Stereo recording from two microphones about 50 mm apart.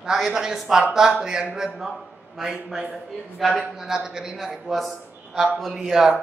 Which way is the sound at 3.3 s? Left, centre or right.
Centre.